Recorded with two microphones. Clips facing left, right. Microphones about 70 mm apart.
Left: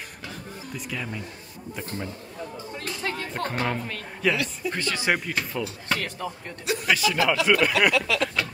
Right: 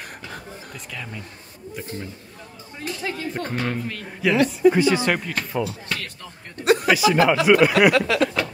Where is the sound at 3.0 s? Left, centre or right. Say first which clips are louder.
Right 1 dB; centre.